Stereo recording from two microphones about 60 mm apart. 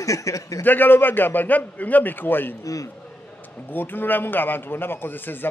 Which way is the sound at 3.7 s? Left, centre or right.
Left.